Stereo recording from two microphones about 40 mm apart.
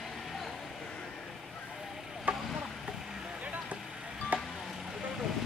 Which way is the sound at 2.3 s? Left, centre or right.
Right.